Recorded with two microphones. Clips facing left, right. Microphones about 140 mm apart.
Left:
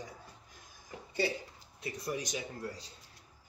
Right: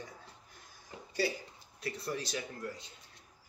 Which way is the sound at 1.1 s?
25° left (ahead or behind).